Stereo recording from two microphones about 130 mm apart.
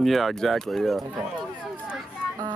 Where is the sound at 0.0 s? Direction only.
Centre (ahead or behind).